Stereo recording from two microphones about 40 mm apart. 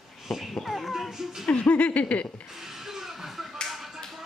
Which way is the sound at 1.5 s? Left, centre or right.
Left.